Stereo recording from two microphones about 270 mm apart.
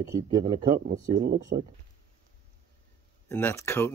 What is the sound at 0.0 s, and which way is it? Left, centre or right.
Speech, centre.